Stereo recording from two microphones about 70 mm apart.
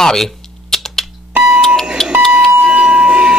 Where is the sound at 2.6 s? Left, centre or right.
Centre.